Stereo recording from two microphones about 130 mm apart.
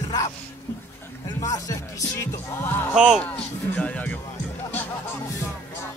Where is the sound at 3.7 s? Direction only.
10° left (ahead or behind).